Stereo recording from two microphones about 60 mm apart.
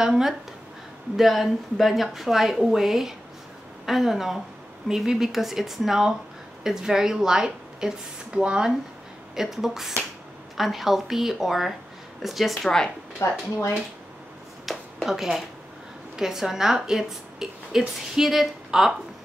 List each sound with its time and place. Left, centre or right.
0.0 s a woman's voice: centre
12.6 s a woman's voice: centre
13.2 s speech: left
14.7 s a sound: centre
16.2 s a woman's voice: centre